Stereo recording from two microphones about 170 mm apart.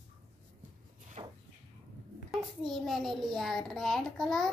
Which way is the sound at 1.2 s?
35° right (ahead or behind).